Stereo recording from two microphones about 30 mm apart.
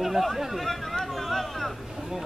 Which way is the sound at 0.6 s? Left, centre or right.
Centre.